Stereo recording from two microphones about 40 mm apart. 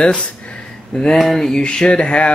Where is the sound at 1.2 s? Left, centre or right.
Centre; by 2.3 s left.